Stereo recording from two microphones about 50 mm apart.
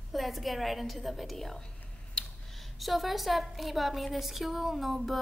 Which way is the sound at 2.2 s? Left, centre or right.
Centre.